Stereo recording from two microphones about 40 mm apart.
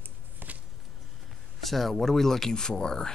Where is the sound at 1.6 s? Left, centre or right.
Centre.